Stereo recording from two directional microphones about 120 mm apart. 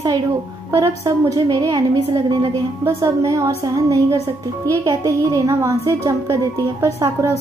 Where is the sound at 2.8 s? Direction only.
25° right (ahead or behind).